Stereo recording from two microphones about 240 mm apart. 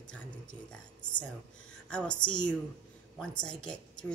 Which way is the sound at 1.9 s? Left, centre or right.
Centre.